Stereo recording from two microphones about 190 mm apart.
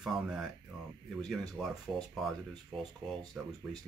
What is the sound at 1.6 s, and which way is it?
Speech, 5° left (ahead or behind).